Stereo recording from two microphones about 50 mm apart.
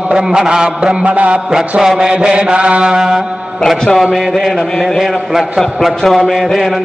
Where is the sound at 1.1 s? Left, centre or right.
Right.